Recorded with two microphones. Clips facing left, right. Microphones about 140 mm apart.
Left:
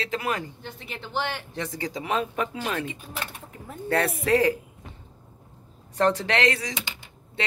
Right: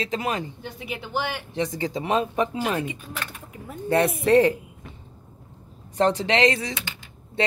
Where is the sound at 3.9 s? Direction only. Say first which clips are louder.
Right 4 dB; 15° right (ahead or behind).